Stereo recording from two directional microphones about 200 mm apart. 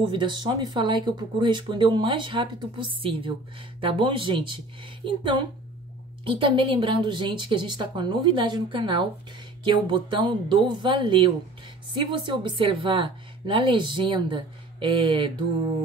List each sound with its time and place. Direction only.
0.0 s speech: 25° right (ahead or behind)